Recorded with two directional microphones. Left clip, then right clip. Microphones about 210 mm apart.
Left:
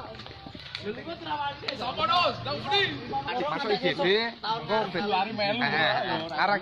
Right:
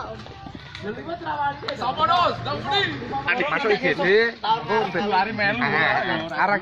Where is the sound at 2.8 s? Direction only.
65° left (ahead or behind).